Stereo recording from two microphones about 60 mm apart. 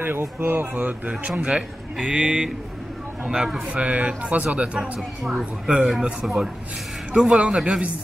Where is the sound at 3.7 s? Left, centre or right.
Right.